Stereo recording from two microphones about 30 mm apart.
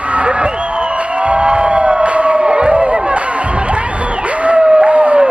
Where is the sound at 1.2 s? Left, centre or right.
Right.